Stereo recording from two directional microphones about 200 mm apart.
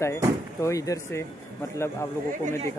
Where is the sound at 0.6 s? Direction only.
15° left (ahead or behind).